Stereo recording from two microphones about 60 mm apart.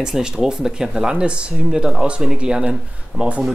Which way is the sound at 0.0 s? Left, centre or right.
Centre.